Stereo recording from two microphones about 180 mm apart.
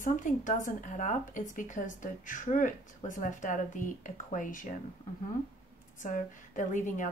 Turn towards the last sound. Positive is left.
turn(degrees=45)  # may be behind; listen again after turning